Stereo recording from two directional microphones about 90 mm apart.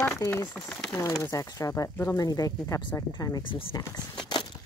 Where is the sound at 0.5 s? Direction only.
20° left (ahead or behind).